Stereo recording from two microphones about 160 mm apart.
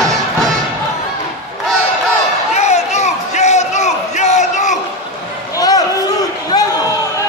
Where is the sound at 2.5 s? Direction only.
45° left (ahead or behind).